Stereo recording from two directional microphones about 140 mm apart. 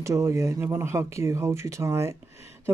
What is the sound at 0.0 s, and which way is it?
Speech, 20° right (ahead or behind).